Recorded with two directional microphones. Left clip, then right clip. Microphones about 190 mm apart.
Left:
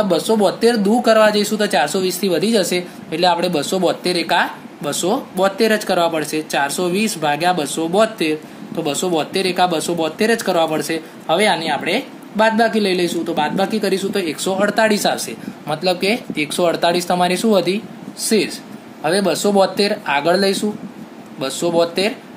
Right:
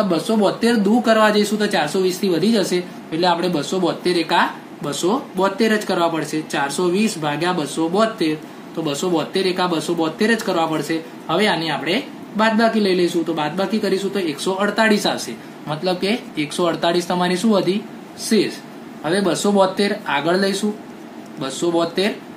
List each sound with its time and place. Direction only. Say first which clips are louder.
0.1 s speech: left 3 dB; 50° left (ahead or behind)